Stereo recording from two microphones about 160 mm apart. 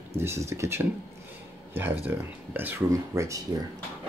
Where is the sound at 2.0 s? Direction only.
10° right (ahead or behind).